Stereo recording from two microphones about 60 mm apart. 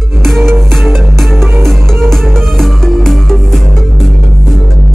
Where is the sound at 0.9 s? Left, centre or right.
Centre.